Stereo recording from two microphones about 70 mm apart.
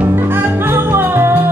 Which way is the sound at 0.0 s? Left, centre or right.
Right.